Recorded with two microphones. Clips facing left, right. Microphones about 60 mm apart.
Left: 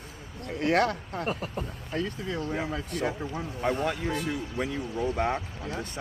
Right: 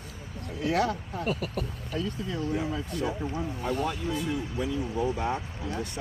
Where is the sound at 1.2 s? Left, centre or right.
Left.